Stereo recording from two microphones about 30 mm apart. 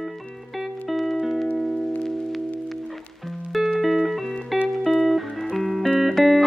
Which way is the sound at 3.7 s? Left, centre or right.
Centre.